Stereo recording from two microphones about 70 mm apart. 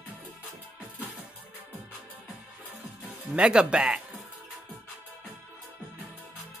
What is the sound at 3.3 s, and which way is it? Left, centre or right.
Speech, centre.